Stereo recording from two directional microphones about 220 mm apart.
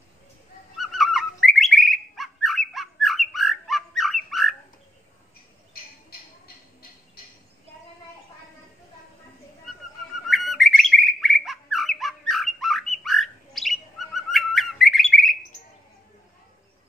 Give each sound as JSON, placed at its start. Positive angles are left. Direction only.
{"t": 0.7, "sound": "bird", "side_deg": 0}
{"t": 5.7, "sound": "a sound", "side_deg": 45}
{"t": 9.7, "sound": "whistling", "side_deg": 0}
{"t": 10.2, "sound": "squawk", "side_deg": 0}